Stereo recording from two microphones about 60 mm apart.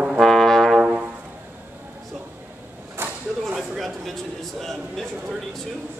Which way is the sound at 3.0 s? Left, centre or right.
Right.